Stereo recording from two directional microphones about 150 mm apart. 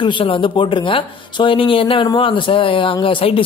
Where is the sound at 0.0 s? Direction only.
35° left (ahead or behind).